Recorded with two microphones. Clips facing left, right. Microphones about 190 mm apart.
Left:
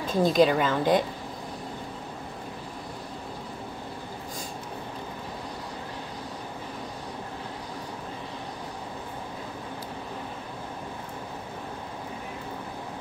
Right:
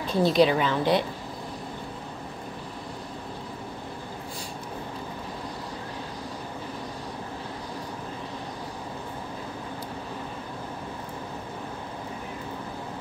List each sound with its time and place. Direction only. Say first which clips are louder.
0.0 s a woman's voice: even; 45° left (ahead or behind)